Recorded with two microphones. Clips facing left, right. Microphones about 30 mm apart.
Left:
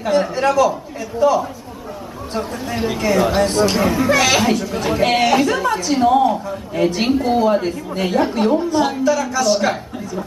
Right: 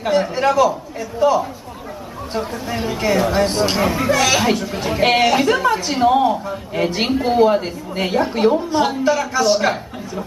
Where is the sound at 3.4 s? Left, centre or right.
Centre.